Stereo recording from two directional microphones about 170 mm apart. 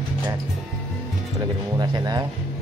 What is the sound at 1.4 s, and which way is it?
Music, 25° right (ahead or behind).